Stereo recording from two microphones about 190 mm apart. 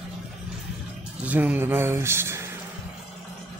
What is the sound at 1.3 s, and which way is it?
Speech, 10° right (ahead or behind).